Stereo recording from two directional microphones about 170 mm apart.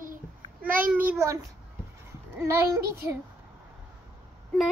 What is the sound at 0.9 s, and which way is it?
Speech, 10° right (ahead or behind).